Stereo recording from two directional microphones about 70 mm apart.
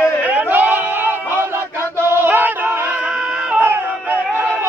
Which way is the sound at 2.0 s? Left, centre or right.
Right.